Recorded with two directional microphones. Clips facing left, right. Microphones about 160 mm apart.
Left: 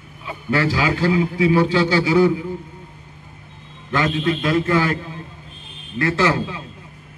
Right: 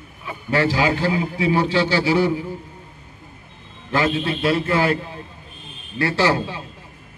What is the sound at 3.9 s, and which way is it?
A man's voice, 30° right (ahead or behind).